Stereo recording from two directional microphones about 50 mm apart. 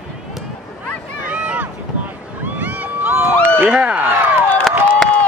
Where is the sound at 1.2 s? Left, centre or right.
Right.